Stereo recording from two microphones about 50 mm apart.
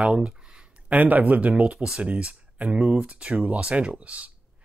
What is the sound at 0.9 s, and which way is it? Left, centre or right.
Speech, right.